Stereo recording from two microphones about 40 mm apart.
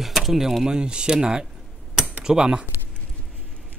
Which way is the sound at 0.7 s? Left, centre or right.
Right.